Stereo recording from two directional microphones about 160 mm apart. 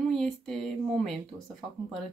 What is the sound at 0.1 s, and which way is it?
Speech, 5° left (ahead or behind).